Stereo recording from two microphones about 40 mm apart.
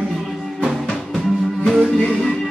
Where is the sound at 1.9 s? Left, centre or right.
Centre.